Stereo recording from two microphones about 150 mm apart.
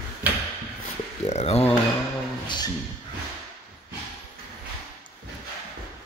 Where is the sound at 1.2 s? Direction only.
45° left (ahead or behind).